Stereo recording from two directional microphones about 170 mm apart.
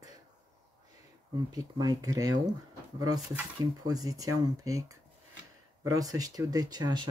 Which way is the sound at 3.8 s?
20° right (ahead or behind).